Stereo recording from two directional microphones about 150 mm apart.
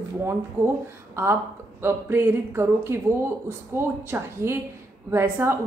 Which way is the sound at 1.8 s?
15° right (ahead or behind).